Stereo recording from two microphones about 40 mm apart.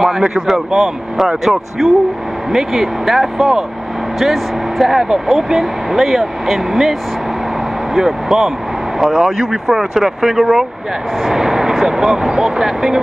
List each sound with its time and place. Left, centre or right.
0.2 s speech: centre
10.2 s speech: centre